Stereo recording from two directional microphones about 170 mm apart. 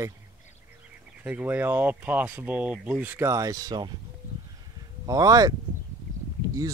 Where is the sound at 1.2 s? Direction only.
10° right (ahead or behind).